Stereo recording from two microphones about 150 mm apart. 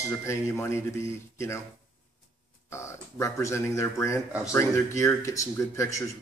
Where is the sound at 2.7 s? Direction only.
20° left (ahead or behind).